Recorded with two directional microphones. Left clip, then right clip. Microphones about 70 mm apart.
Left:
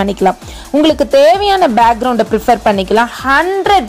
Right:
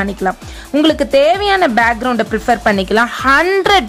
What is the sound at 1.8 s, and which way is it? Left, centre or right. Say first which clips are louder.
Speech: left 3 dB; centre.